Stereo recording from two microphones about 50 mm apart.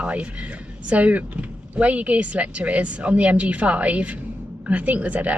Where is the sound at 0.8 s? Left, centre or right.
Right.